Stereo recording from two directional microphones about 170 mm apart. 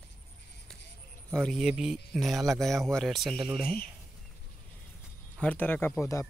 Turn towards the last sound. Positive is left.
turn(degrees=15)  # may be behind; listen again after turning